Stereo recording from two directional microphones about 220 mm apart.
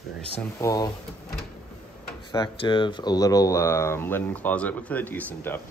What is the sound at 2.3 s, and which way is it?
Speech, 20° left (ahead or behind).